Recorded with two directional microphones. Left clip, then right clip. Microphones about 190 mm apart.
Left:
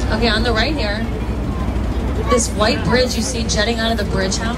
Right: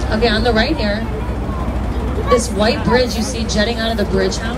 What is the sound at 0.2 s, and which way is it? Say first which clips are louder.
Speech: right 3 dB; 20° left (ahead or behind).